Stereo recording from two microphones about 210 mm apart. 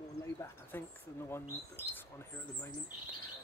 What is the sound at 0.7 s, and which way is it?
Speech, 10° left (ahead or behind).